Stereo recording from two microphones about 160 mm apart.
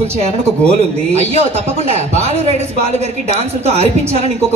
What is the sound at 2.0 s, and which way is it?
A woman's voice, 45° right (ahead or behind).